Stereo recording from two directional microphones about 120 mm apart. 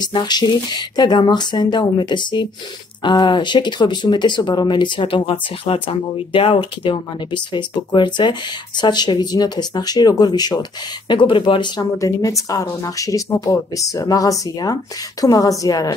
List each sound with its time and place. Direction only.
0.0 s speech: 35° left (ahead or behind)